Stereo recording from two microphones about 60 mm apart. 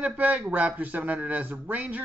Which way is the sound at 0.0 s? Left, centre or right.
Right.